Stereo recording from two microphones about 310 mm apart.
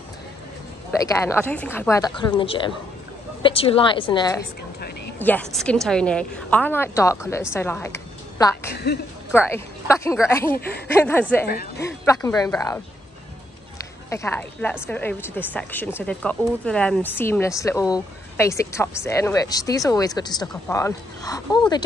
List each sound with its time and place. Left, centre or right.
1.0 s speech: centre
5.2 s a woman's voice: centre
8.7 s a woman's voice: left
9.3 s speech: centre
11.4 s speech: left
12.0 s speech: centre
14.1 s a woman's voice: centre